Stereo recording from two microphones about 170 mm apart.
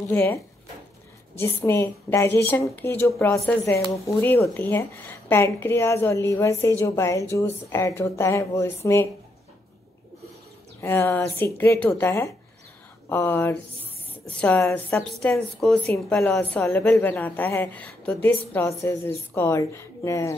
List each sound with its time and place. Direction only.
0.1 s a woman's voice: 15° left (ahead or behind)
10.8 s a woman's voice: 15° left (ahead or behind)